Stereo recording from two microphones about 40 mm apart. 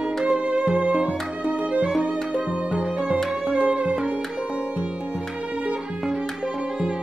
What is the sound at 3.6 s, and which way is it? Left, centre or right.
Music, right.